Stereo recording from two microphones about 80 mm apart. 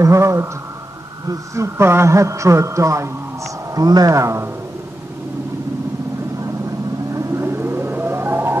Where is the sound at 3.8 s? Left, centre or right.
Right.